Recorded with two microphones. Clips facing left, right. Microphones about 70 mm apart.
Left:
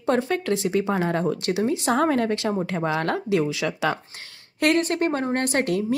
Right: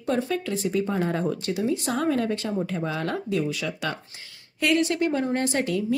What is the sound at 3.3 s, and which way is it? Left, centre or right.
Speech, left.